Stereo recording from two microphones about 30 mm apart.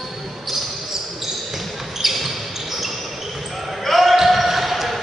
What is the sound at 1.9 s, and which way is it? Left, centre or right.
Basketball bounce, centre.